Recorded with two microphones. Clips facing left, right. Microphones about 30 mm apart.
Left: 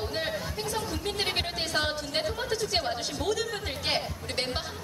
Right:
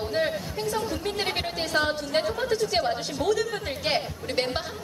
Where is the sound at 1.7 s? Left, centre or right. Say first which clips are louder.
Right 5 dB; centre.